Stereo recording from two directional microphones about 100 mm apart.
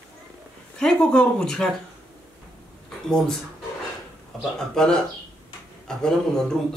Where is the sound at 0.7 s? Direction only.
10° left (ahead or behind).